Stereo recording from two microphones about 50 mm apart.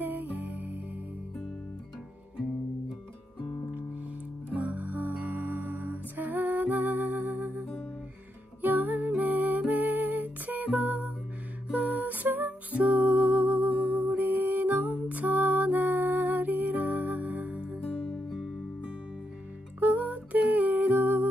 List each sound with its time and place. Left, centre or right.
0.0 s music: right
4.6 s music: right
8.6 s music: right
17.9 s music: left
19.8 s humming: right